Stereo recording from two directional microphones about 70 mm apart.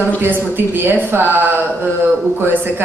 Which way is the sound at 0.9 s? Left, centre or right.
Right.